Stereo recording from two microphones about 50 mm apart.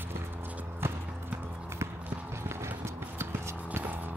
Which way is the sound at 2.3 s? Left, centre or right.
Right.